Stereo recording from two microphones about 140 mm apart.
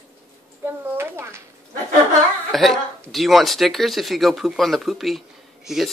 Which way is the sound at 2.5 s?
Centre (ahead or behind).